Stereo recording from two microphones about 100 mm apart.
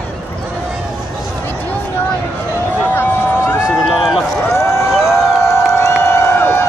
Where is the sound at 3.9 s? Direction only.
5° right (ahead or behind).